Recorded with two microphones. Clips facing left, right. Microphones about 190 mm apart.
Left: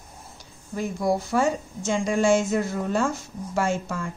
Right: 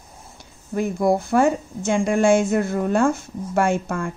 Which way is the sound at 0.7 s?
55° right (ahead or behind).